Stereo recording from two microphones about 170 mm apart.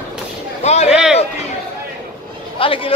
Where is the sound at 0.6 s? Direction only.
40° left (ahead or behind).